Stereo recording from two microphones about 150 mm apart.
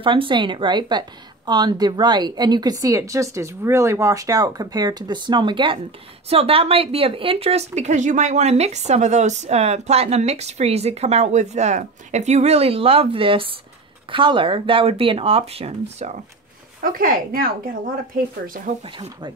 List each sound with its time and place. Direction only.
0.0 s a woman's voice: 35° right (ahead or behind)
16.8 s speech: 70° right (ahead or behind)
18.7 s speech: 55° right (ahead or behind)